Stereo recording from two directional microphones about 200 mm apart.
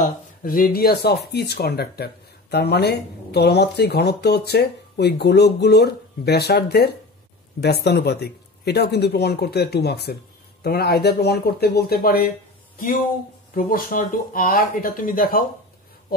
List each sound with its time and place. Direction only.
0.0 s speech: 45° left (ahead or behind)
13.6 s speech: 45° left (ahead or behind)